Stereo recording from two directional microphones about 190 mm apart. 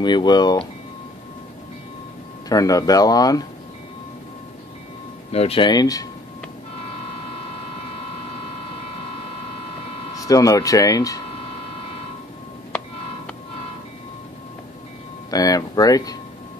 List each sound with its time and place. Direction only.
0.0 s speech: 25° left (ahead or behind)
2.5 s speech: 20° left (ahead or behind)
5.3 s speech: 30° left (ahead or behind)
10.1 s speech: 20° left (ahead or behind)
15.3 s speech: 20° left (ahead or behind)